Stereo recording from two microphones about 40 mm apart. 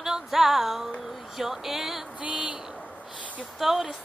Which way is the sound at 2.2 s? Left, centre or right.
Right.